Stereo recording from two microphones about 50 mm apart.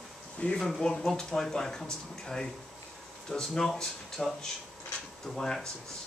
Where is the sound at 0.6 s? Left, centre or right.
Centre.